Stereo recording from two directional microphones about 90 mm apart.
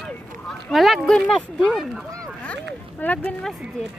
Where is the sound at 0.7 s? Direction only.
Centre (ahead or behind).